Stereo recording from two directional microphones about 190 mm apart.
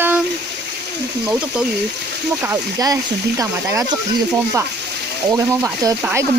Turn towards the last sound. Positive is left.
turn(degrees=-15)  # may be behind; listen again after turning